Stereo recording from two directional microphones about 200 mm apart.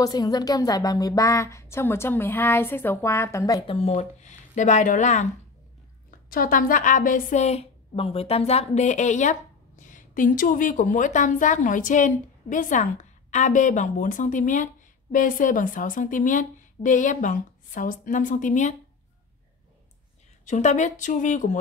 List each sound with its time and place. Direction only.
0.0 s a woman's voice: 20° left (ahead or behind); by 5.3 s 35° left (ahead or behind)
6.3 s a woman's voice: 45° left (ahead or behind)
20.4 s a woman's voice: 35° left (ahead or behind)